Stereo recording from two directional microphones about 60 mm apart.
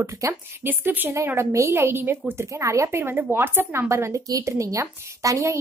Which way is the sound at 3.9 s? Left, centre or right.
Right.